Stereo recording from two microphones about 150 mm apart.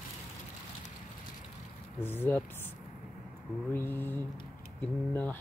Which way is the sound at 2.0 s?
15° left (ahead or behind).